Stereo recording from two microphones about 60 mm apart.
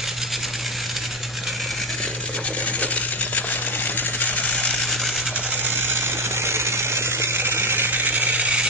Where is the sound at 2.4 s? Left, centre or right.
Left.